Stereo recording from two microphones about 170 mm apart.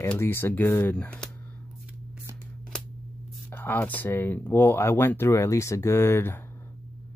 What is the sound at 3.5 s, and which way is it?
Speech, 10° left (ahead or behind).